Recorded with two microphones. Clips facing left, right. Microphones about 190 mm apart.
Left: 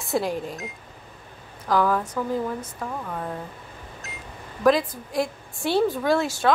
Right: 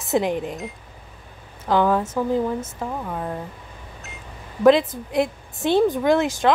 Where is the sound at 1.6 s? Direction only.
25° right (ahead or behind).